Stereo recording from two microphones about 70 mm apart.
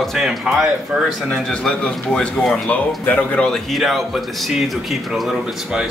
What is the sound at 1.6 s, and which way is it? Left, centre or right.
Speech, centre.